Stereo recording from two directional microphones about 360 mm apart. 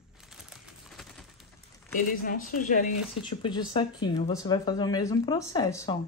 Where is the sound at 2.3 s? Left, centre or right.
Left.